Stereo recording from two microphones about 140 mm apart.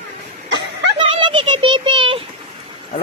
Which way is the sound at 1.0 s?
40° right (ahead or behind).